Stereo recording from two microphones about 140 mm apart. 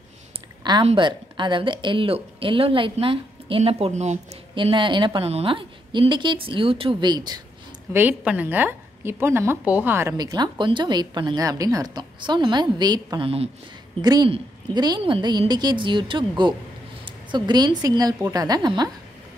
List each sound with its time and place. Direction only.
0.8 s speech: 35° right (ahead or behind); by 4.2 s 55° right (ahead or behind)
4.6 s speech: 35° right (ahead or behind)
7.9 s a woman's voice: 15° right (ahead or behind)
10.1 s a woman's voice: 30° right (ahead or behind)